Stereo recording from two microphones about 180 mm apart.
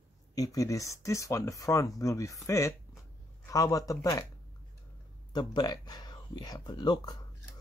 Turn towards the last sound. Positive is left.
turn(degrees=20)  # may be behind; listen again after turning